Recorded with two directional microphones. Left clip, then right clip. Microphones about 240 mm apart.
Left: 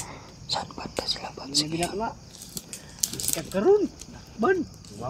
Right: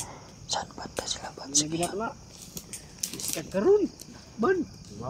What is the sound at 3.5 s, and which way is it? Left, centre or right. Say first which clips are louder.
Speech: left 2 dB; centre.